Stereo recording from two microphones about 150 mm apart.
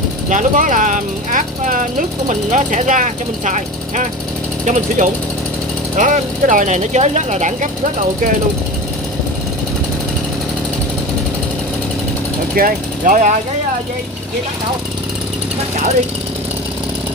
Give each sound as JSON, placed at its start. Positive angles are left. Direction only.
{"t": 0.3, "sound": "speech", "side_deg": -55}
{"t": 12.5, "sound": "speech", "side_deg": -70}